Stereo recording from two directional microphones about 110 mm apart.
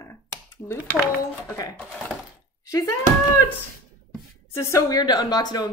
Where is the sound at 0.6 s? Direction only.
25° left (ahead or behind).